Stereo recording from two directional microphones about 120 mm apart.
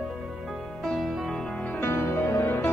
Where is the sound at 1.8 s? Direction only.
20° left (ahead or behind).